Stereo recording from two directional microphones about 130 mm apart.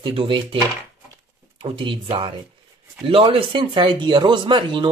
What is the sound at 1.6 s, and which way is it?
Speech, 45° right (ahead or behind).